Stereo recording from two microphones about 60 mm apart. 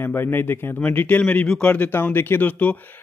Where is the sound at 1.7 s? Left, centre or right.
Left.